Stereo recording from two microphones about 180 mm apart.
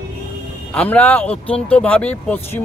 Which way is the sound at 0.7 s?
10° left (ahead or behind).